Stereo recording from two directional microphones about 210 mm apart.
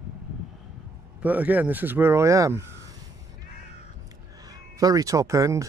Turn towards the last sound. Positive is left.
turn(degrees=-15)  # may be behind; listen again after turning